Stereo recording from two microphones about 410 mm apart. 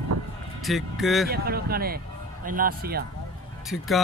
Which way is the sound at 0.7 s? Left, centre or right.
Centre.